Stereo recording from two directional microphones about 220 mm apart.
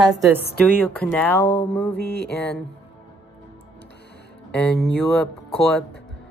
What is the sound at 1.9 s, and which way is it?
Music, 50° left (ahead or behind).